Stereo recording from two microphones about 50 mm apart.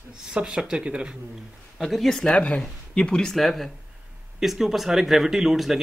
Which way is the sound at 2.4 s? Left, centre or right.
Left.